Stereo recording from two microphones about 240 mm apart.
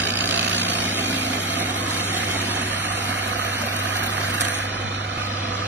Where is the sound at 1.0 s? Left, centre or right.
Right.